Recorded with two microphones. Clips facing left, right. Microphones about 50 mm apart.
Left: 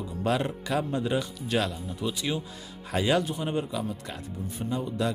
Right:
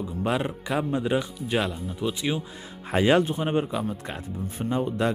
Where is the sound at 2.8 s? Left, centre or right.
Right.